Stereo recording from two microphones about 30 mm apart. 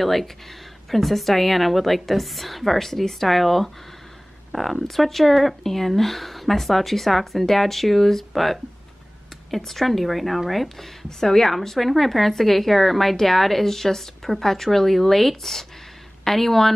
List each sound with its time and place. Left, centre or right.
0.0 s a woman's voice: centre
9.6 s speech: centre
11.1 s a woman's voice: centre